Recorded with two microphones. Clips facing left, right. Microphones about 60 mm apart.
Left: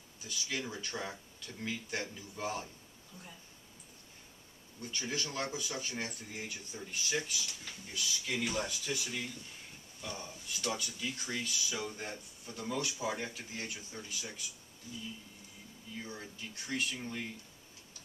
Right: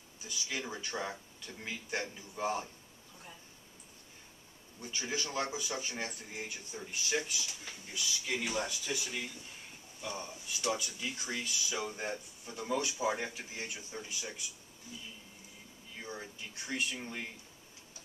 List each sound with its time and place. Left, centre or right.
0.3 s speech: centre
4.7 s speech: centre
16.2 s speech: centre